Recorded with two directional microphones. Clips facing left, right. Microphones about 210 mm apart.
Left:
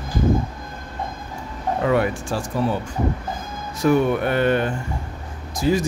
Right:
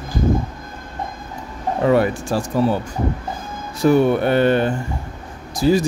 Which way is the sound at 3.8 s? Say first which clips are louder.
Right 3 dB; 30° right (ahead or behind).